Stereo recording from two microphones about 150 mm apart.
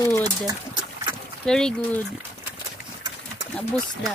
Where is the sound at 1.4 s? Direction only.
5° left (ahead or behind).